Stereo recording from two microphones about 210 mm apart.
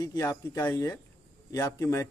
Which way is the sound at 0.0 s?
15° left (ahead or behind).